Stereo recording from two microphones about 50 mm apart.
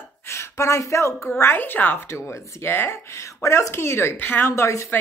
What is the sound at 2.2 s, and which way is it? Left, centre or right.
Speech, left.